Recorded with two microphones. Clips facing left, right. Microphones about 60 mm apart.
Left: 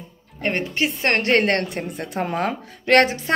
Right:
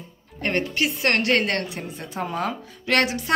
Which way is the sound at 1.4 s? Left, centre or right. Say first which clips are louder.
Left 4 dB; left.